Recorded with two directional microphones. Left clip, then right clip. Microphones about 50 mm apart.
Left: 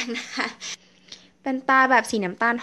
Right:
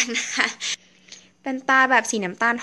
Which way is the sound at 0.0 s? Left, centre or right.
Left.